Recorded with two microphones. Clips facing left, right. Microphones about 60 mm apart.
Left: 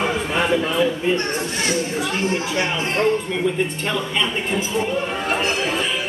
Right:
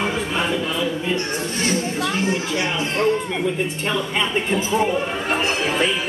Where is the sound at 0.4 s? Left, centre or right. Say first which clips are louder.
Left 6 dB; left.